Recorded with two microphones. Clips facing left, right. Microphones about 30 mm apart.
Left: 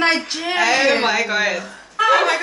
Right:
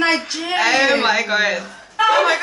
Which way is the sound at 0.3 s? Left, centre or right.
Centre.